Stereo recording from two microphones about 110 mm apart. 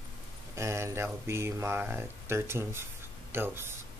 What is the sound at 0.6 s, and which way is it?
Speech, 25° right (ahead or behind).